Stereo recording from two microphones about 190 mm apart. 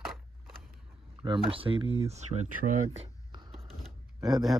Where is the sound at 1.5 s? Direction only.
30° right (ahead or behind).